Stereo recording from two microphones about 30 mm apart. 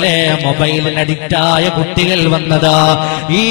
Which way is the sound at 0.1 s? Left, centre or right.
Centre.